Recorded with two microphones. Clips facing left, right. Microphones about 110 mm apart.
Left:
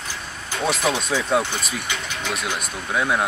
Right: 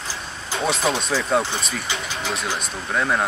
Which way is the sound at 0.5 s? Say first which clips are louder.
Even; 25° right (ahead or behind).